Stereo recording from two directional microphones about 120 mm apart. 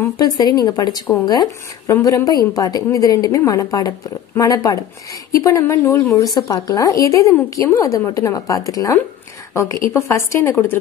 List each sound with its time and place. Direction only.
0.0 s speech: 35° left (ahead or behind)